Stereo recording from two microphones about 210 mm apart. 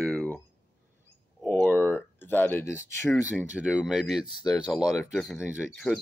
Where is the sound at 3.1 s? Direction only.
5° right (ahead or behind).